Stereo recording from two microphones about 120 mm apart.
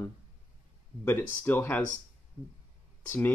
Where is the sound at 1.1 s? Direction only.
15° left (ahead or behind).